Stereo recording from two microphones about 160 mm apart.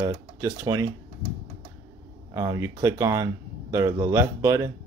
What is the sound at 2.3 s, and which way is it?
Speech, 20° right (ahead or behind).